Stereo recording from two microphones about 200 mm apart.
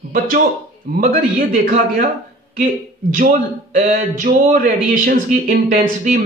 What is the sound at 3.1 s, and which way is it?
Speech, 35° right (ahead or behind).